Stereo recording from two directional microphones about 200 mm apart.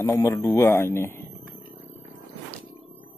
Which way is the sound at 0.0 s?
15° left (ahead or behind).